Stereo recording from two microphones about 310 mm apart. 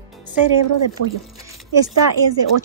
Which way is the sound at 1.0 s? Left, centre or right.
Right.